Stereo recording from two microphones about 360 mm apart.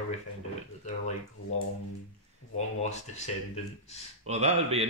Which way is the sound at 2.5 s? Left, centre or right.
Centre.